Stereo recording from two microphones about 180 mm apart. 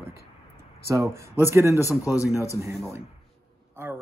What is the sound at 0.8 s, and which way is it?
Speech, 15° right (ahead or behind).